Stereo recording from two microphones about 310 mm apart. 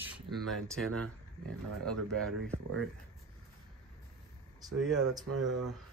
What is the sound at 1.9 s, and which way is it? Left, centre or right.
Speech, centre.